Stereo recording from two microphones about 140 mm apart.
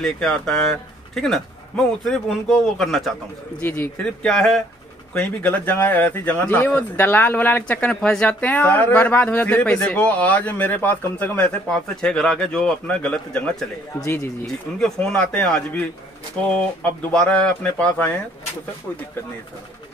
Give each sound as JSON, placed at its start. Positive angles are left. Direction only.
{"t": 0.0, "sound": "a man's voice", "side_deg": 5}
{"t": 3.6, "sound": "speech", "side_deg": 15}
{"t": 5.1, "sound": "speech", "side_deg": 15}
{"t": 14.0, "sound": "speech", "side_deg": 20}
{"t": 14.4, "sound": "a man's voice", "side_deg": 5}
{"t": 17.1, "sound": "speech", "side_deg": 5}